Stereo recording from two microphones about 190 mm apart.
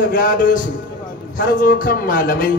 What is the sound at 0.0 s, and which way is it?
A man's voice, 45° left (ahead or behind).